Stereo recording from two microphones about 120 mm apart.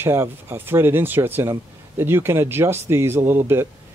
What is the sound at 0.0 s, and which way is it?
Speech, 20° right (ahead or behind).